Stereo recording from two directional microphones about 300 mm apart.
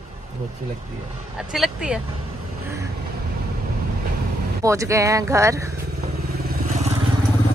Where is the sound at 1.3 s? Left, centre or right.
Centre.